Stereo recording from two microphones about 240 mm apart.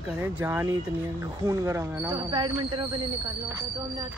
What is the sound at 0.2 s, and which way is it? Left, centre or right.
Speech, centre.